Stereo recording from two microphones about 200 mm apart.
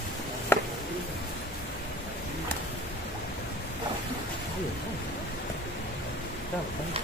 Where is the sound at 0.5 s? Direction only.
10° left (ahead or behind).